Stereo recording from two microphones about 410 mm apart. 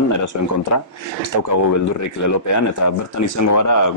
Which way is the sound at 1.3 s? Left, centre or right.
Left.